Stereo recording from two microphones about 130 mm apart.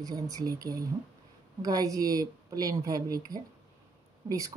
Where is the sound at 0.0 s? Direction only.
30° right (ahead or behind).